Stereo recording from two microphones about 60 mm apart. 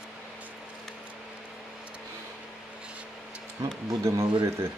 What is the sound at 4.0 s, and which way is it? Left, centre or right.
Speech, right.